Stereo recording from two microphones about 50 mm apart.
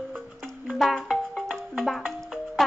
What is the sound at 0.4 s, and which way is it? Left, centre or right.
Music, centre.